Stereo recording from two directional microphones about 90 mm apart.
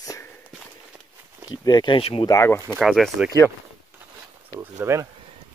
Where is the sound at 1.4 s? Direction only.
50° left (ahead or behind); by 2.3 s 80° left.